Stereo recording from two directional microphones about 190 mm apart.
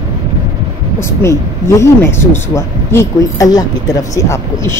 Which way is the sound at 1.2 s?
15° left (ahead or behind).